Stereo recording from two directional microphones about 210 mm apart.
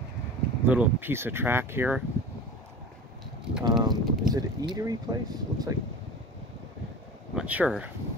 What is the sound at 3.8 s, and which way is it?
Speech, 20° right (ahead or behind).